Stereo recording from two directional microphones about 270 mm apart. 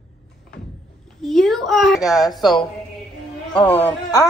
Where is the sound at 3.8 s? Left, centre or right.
Centre.